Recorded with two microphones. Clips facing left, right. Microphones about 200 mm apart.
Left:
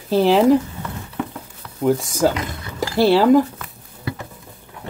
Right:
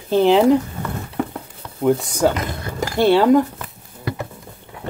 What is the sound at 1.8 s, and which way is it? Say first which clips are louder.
Speech: right 1 dB; centre (ahead or behind).